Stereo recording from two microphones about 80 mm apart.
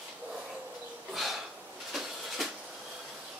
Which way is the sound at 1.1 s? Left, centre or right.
Centre.